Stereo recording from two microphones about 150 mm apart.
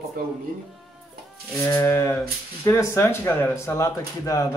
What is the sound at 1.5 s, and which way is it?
Speech, 20° left (ahead or behind).